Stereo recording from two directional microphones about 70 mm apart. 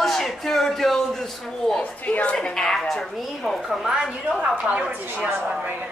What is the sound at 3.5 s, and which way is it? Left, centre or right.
Speech, centre.